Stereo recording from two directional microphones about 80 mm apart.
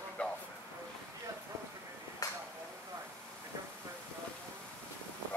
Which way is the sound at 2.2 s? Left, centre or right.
Left.